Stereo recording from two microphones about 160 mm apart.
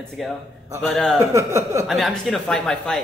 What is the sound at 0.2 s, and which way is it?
Speech, centre (ahead or behind).